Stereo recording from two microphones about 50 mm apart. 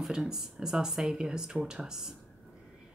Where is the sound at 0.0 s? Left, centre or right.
Centre.